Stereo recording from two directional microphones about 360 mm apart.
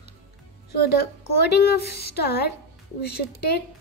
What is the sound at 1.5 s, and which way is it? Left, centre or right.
Speech, left.